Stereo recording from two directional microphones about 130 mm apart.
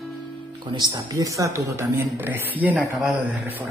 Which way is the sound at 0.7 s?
30° right (ahead or behind).